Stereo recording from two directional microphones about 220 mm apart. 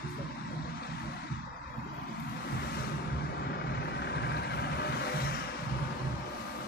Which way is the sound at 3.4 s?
50° left (ahead or behind).